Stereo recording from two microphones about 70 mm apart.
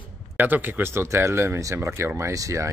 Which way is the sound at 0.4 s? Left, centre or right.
Right.